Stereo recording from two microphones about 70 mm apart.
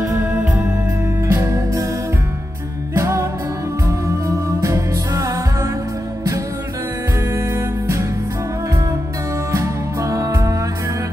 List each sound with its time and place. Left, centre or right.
0.0 s music: right
1.3 s music: right
3.0 s music: right
4.6 s music: right
9.5 s music: right